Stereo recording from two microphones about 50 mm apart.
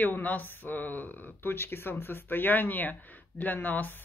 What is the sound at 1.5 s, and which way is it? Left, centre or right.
Speech, left.